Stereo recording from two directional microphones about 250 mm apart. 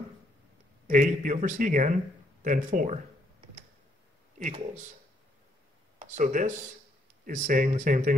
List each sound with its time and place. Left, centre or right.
0.8 s speech: right
4.4 s speech: right
5.9 s speech: right